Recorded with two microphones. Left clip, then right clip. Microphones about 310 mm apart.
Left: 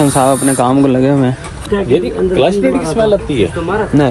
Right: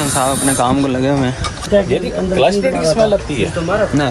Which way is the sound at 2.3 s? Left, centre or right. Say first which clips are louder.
Left 1 dB; left.